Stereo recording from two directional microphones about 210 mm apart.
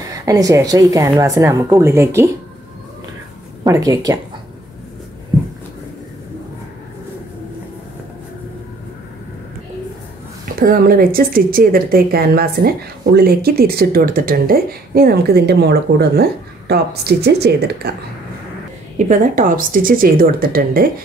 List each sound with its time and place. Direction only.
0.2 s a woman's voice: 15° right (ahead or behind)
3.6 s a woman's voice: 15° right (ahead or behind)
10.6 s speech: 45° right (ahead or behind)
19.0 s speech: 40° right (ahead or behind)